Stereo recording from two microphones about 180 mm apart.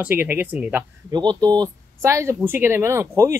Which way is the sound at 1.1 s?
25° right (ahead or behind).